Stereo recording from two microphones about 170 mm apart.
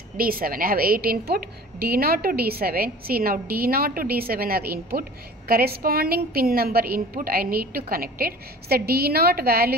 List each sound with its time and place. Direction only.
0.2 s a woman's voice: 60° right (ahead or behind)